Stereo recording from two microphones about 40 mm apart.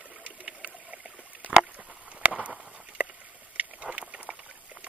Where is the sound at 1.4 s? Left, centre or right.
Right.